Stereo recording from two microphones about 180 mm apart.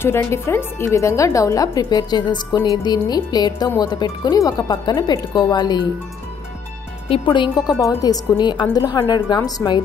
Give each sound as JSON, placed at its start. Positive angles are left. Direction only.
{"t": 0.0, "sound": "speech", "side_deg": 15}
{"t": 7.1, "sound": "speech", "side_deg": 25}